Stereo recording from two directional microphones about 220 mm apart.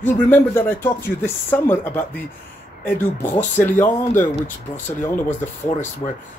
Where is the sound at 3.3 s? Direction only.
10° left (ahead or behind).